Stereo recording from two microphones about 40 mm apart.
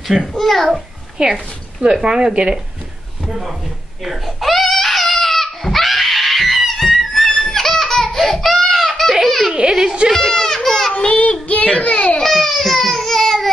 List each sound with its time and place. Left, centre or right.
0.1 s a child's voice: centre
1.3 s speech: right
3.3 s speech: centre
4.0 s crying: centre
9.1 s baby laughter: centre
9.6 s whimper: centre
10.1 s baby cry: centre
10.9 s child singing: left
11.8 s baby cry: left
12.2 s baby cry: centre